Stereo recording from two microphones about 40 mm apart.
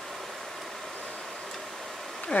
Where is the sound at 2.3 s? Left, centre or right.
Left.